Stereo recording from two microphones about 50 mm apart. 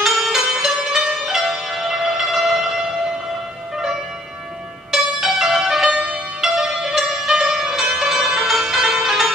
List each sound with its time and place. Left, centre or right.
0.0 s zither: centre
3.7 s music: centre
5.9 s zither: centre